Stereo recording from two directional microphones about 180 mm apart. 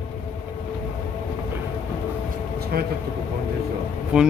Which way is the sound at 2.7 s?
60° right (ahead or behind).